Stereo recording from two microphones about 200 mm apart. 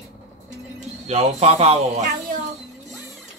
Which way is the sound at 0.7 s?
30° right (ahead or behind).